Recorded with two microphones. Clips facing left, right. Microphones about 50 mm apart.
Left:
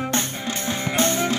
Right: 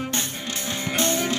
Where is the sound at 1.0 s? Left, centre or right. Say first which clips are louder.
Left 2 dB; left.